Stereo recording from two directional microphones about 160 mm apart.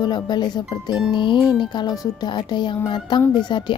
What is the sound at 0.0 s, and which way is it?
Speech, 25° left (ahead or behind).